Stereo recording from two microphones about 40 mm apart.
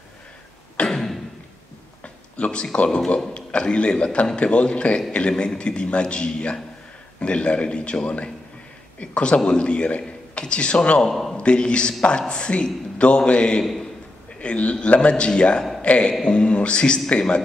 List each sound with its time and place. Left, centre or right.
0.8 s a sound: centre
2.3 s a man's voice: left
11.1 s a man's voice: centre
11.3 s a man's voice: left
16.1 s a man's voice: left